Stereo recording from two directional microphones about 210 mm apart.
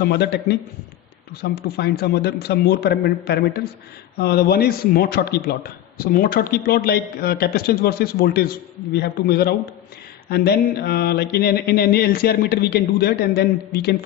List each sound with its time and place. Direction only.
0.0 s a man's voice: 50° left (ahead or behind)